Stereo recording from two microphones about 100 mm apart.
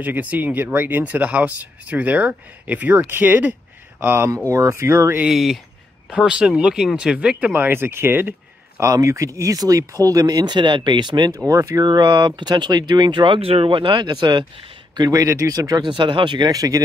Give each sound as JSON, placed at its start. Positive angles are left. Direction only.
{"t": 0.0, "sound": "speech", "side_deg": -15}
{"t": 4.5, "sound": "speech", "side_deg": -35}
{"t": 5.2, "sound": "speech", "side_deg": -5}
{"t": 11.4, "sound": "speech", "side_deg": -35}
{"t": 15.0, "sound": "speech", "side_deg": -35}
{"t": 15.9, "sound": "speech", "side_deg": -55}